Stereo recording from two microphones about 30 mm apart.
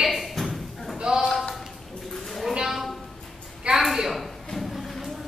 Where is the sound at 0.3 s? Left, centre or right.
Centre.